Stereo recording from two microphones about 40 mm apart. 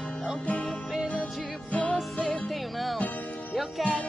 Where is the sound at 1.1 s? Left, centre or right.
Left.